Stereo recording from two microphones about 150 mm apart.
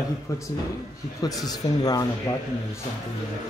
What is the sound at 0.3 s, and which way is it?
Speech, 20° left (ahead or behind).